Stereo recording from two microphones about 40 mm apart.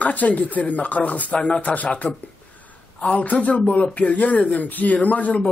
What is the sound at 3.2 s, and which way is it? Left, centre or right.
A man's voice, left.